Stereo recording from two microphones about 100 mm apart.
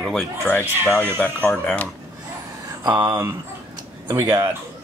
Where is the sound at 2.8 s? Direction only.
50° right (ahead or behind).